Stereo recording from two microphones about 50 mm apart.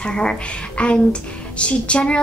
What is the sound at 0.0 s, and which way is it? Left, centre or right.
A woman's voice, centre.